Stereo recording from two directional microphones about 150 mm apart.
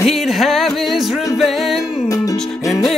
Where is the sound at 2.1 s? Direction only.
20° left (ahead or behind).